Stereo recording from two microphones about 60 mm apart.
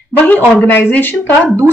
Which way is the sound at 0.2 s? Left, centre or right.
Left.